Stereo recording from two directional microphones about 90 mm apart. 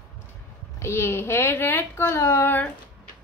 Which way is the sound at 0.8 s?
30° left (ahead or behind).